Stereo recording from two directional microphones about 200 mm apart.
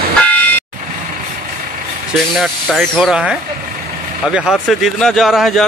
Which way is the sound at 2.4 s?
Centre (ahead or behind).